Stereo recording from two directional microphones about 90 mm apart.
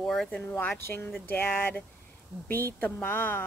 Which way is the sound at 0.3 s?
15° left (ahead or behind).